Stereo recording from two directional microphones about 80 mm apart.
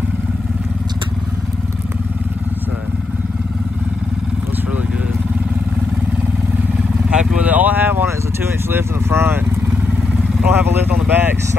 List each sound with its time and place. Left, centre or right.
7.1 s vehicle: centre
8.6 s speech: right
10.4 s speech: right